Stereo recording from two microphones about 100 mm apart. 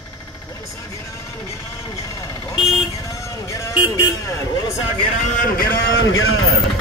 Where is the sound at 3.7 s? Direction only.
45° left (ahead or behind).